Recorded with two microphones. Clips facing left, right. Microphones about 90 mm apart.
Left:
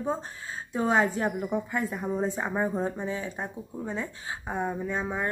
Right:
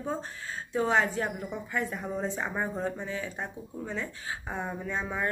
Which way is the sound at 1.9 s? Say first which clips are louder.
Left 4 dB; 10° left (ahead or behind).